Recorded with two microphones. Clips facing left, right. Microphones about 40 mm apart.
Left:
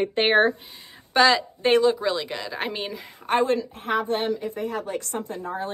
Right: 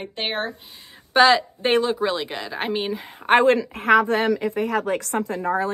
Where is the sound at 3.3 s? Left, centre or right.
Right.